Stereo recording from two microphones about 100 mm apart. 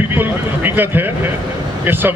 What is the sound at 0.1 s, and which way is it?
A man's voice, 20° right (ahead or behind).